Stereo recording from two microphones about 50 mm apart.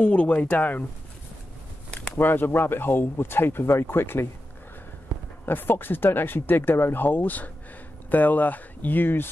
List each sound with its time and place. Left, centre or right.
0.0 s speech: left
2.1 s speech: left
5.4 s speech: left